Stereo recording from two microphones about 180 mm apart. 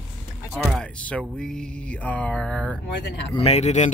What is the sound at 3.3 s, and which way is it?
Speech, 35° left (ahead or behind).